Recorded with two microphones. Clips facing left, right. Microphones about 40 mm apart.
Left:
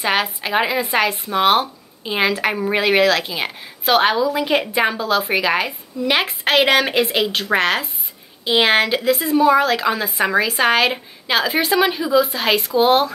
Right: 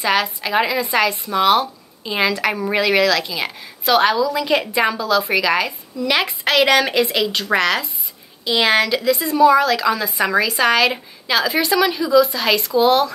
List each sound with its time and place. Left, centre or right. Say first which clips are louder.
0.0 s a woman's voice: right 1 dB; left